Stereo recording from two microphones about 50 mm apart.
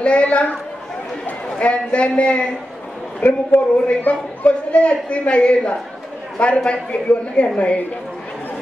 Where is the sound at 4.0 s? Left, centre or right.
Left.